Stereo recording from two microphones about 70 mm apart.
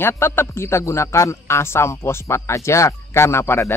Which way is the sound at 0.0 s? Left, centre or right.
Left.